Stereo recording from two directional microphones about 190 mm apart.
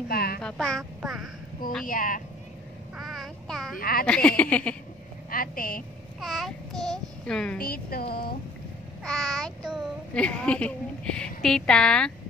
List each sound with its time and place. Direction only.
0.1 s a sound: 55° left (ahead or behind)
0.4 s speech: 5° left (ahead or behind)
1.9 s a woman's voice: 45° left (ahead or behind)
3.0 s child singing: centre (ahead or behind)
3.7 s a woman's voice: 50° left (ahead or behind)
4.0 s speech: 5° left (ahead or behind)
5.3 s a woman's voice: 50° left (ahead or behind)
6.2 s a child's voice: centre (ahead or behind)
7.6 s a woman's voice: 50° left (ahead or behind)
9.0 s a child's voice: 5° left (ahead or behind)